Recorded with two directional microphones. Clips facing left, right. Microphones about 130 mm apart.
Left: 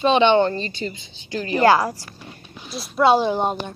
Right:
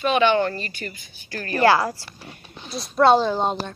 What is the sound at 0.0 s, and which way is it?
A woman's voice, 25° left (ahead or behind).